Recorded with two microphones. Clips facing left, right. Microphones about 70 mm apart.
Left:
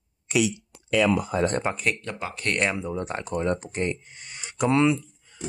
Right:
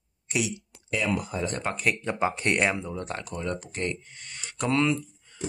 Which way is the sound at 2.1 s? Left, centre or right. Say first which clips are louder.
Right 4 dB; right.